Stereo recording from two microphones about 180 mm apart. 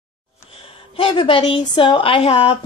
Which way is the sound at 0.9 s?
30° left (ahead or behind).